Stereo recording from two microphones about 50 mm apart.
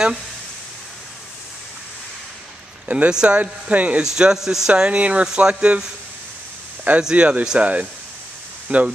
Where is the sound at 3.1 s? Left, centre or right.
Centre.